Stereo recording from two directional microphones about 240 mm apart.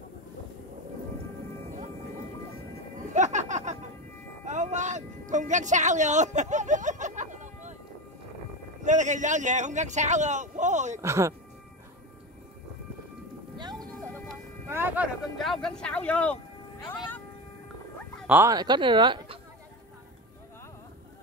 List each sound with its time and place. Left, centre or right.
3.1 s music: right
4.5 s a sound: right
8.8 s a man's voice: right
11.0 s speech: centre
13.6 s music: centre
14.7 s speech: centre
18.2 s speech: centre